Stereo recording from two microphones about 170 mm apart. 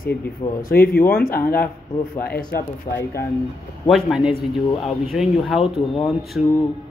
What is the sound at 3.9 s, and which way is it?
Speech, centre (ahead or behind).